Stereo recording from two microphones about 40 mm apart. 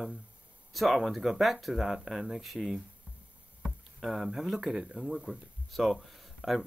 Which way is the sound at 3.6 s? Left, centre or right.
Centre.